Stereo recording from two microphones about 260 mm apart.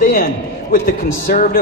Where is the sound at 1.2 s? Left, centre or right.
Left.